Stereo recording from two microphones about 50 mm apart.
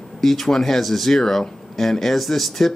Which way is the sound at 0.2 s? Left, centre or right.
Centre.